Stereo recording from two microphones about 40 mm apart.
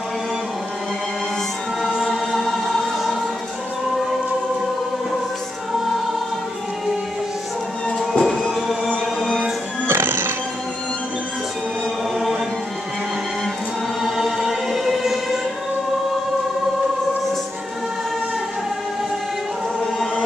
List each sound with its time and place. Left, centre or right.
1.8 s choir: centre
2.0 s choir: centre
8.1 s music: centre
9.8 s music: right
14.0 s choir: centre